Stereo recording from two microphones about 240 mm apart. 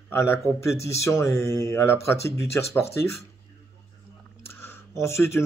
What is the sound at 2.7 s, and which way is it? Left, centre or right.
Speech, centre.